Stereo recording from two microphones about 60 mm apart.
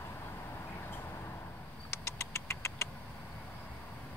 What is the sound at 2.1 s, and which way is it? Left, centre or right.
Vehicle, left.